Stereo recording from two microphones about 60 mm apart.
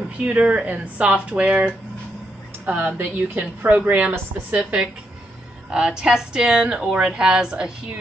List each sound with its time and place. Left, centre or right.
0.2 s a woman's voice: right